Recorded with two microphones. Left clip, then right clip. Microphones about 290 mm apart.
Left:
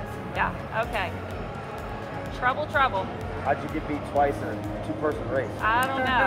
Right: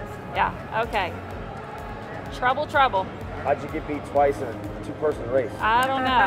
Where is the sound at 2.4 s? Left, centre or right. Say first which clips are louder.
Right 3 dB; right.